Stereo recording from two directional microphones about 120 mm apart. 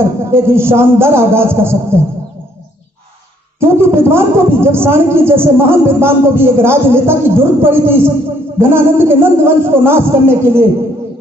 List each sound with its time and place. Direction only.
0.0 s a woman's voice: 20° right (ahead or behind)
3.5 s a woman's voice: 20° right (ahead or behind)